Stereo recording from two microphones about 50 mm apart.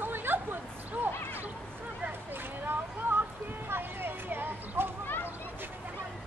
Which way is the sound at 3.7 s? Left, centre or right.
Right.